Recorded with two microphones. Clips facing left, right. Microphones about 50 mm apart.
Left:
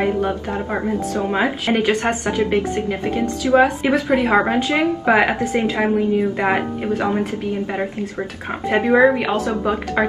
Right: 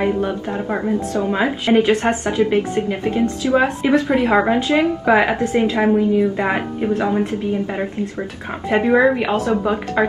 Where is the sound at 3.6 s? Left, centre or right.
Centre.